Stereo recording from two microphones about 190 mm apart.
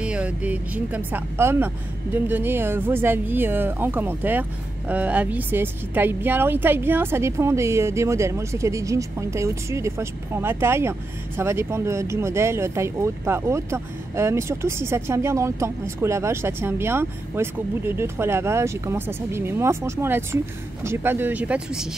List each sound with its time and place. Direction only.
0.0 s speech: 5° right (ahead or behind)